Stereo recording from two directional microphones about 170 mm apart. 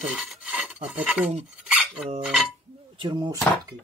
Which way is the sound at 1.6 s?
5° right (ahead or behind).